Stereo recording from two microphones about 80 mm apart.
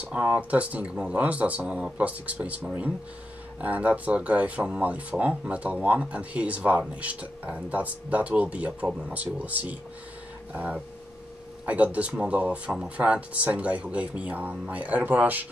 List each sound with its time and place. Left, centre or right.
0.0 s speech: centre